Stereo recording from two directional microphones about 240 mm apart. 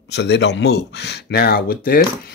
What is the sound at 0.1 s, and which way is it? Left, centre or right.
Speech, left.